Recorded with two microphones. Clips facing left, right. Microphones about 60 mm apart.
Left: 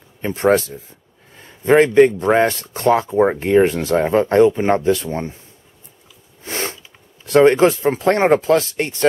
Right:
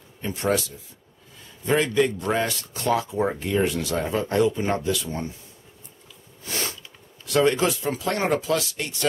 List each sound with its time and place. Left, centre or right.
0.2 s a man's voice: left
6.4 s sneeze: left
7.2 s a man's voice: left